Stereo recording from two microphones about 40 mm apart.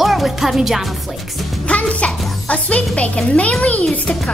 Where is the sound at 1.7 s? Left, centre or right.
Left.